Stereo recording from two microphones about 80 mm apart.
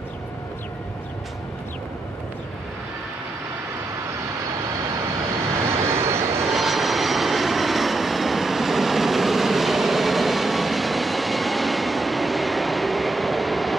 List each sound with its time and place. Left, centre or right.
5.7 s vehicle: right
6.5 s vehicle: centre